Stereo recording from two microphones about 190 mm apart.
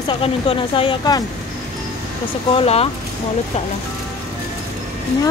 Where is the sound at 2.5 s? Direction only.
30° left (ahead or behind).